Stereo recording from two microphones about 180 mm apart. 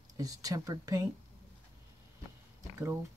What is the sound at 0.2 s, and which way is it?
Speech, 20° right (ahead or behind).